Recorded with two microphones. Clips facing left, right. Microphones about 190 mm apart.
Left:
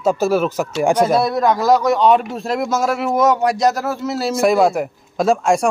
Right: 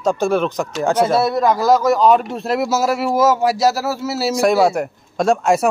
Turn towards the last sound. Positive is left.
turn(degrees=-5)  # may be behind; listen again after turning